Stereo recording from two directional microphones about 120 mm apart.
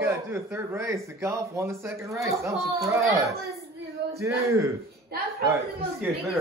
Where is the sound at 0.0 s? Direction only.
20° right (ahead or behind).